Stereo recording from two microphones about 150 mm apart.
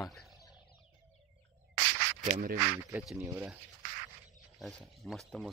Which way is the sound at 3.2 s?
15° right (ahead or behind).